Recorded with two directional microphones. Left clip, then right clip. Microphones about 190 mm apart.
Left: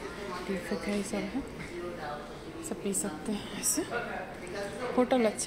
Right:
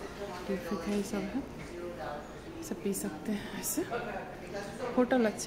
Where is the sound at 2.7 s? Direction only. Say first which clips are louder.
Left 2 dB; 20° right (ahead or behind).